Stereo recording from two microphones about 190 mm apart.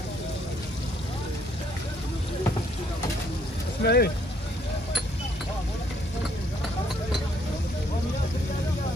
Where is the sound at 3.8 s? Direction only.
55° left (ahead or behind).